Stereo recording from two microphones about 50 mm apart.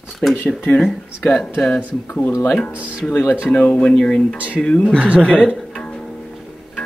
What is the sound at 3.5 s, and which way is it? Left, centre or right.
Speech, left.